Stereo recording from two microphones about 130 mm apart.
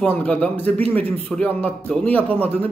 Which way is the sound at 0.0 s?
10° left (ahead or behind).